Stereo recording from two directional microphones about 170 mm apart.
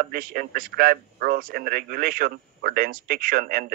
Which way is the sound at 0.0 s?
55° right (ahead or behind).